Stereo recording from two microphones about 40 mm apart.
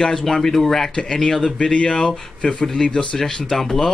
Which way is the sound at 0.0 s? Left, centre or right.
Centre.